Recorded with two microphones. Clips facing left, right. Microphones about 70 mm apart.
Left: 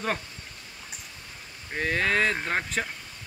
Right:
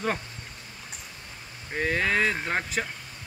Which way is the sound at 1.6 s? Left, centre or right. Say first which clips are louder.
Even; centre.